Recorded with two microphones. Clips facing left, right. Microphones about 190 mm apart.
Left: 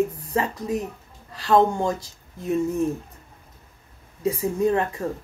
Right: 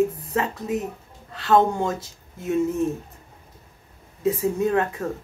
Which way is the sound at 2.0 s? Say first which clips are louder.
Even; 30° left (ahead or behind).